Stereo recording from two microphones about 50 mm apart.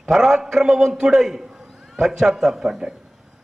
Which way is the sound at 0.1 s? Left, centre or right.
Centre.